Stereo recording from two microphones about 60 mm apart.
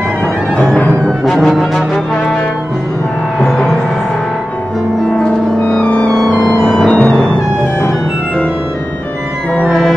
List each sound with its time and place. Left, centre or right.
1.2 s music: centre
3.3 s music: centre
5.2 s music: centre
6.4 s music: centre